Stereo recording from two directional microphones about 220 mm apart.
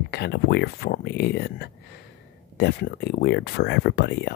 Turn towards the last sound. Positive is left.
turn(degrees=50)  # may be behind; listen again after turning